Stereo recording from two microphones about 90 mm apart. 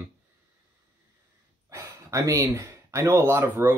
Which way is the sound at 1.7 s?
35° right (ahead or behind).